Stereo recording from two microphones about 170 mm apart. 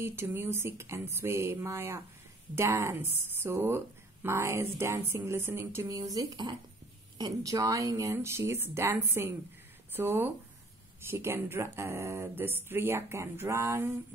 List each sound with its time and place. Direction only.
0.0 s speech: 15° right (ahead or behind)